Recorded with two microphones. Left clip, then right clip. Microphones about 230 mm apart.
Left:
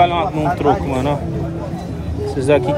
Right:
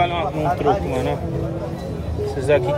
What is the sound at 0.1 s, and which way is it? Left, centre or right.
Speech, left.